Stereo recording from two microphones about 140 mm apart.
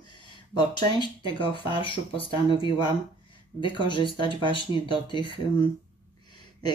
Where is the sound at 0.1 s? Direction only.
35° left (ahead or behind).